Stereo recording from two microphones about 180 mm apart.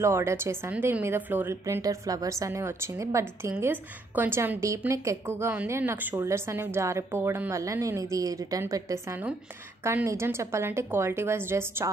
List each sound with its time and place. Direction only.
0.0 s a woman's voice: 15° right (ahead or behind)